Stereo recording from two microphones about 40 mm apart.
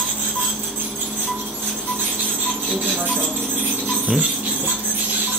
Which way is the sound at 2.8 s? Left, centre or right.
Right.